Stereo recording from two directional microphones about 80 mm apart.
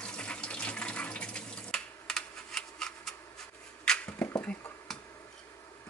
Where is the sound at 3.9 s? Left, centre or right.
Centre.